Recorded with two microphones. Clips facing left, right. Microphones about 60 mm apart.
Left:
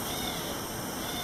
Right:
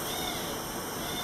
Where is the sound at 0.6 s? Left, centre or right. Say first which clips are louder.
Even; right.